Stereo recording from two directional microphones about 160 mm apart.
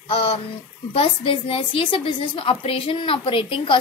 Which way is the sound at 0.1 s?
35° left (ahead or behind).